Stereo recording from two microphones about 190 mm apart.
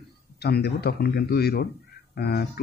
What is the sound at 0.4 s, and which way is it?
Speech, 60° left (ahead or behind).